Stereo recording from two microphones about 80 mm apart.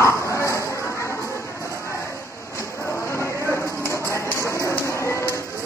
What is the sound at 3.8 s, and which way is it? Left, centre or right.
Music, left.